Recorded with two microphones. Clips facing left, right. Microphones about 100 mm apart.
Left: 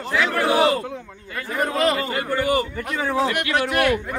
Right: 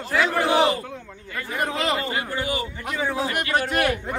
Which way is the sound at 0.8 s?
10° left (ahead or behind).